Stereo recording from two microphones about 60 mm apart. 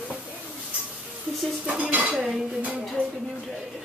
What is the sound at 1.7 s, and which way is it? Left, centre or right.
Dishes, right.